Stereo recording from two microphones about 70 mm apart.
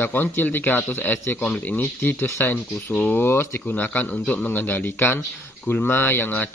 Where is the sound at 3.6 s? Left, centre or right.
Left.